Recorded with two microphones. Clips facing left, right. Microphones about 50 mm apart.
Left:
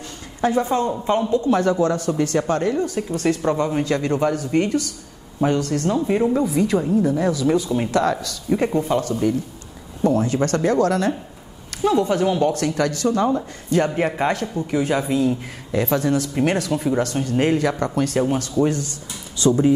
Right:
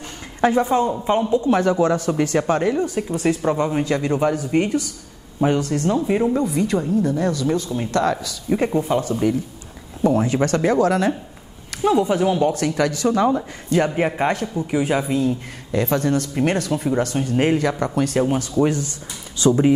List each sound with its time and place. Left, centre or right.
0.6 s speech: centre
5.9 s speech: centre
8.0 s speech: centre; by 13.3 s right
13.7 s speech: centre
18.6 s speech: centre